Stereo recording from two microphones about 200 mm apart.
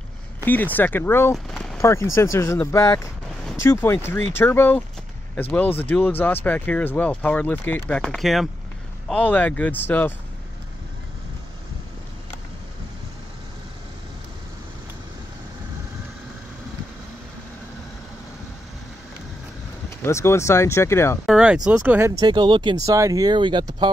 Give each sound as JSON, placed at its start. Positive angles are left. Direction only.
{"t": 0.5, "sound": "speech", "side_deg": 10}
{"t": 1.3, "sound": "a sound", "side_deg": 0}
{"t": 1.8, "sound": "speech", "side_deg": 15}
{"t": 20.0, "sound": "speech", "side_deg": 15}
{"t": 21.3, "sound": "speech", "side_deg": -5}
{"t": 22.2, "sound": "speech", "side_deg": -20}